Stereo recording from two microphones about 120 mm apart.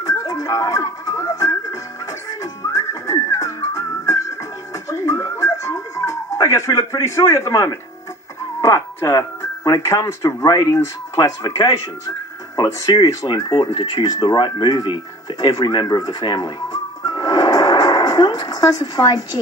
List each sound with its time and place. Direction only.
0.0 s music: 30° left (ahead or behind)
2.4 s whistling: 30° left (ahead or behind)
4.8 s music: 25° left (ahead or behind)
8.5 s speech: 25° left (ahead or behind)
17.0 s music: 35° left (ahead or behind)